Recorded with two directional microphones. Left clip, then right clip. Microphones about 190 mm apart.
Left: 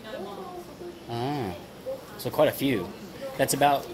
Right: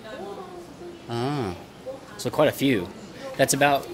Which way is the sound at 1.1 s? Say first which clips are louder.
Right 3 dB; 45° right (ahead or behind).